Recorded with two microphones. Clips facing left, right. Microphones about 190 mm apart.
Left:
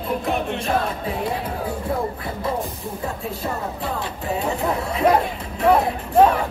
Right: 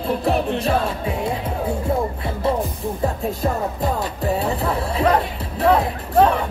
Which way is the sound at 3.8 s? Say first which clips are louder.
Right 5 dB; 40° right (ahead or behind).